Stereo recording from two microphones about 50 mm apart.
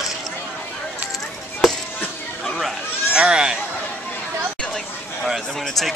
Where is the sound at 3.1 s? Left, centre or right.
Centre.